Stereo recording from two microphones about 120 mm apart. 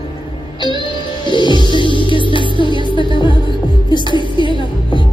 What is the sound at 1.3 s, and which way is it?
Music, 40° left (ahead or behind).